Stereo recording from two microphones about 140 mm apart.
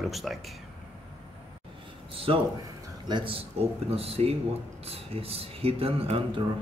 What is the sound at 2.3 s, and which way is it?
Speech, 40° right (ahead or behind).